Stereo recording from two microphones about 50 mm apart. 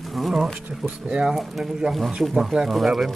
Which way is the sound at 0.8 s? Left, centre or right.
Centre.